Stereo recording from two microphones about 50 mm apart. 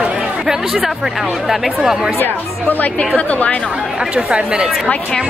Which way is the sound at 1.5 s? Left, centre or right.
Centre.